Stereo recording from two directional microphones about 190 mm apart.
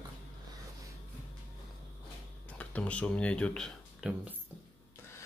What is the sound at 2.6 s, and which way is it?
Speech, 5° left (ahead or behind).